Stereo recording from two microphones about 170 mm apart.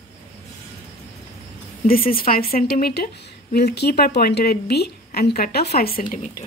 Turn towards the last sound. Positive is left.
turn(degrees=50)  # may be behind; listen again after turning